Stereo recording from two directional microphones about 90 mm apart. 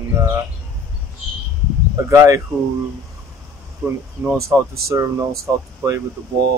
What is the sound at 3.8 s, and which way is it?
Speech, 30° right (ahead or behind).